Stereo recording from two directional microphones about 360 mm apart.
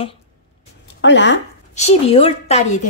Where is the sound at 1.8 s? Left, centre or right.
Centre.